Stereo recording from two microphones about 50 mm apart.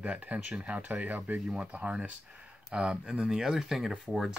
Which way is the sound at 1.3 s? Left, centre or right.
Centre.